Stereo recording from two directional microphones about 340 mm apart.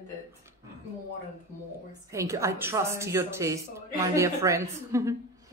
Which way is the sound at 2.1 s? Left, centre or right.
Centre.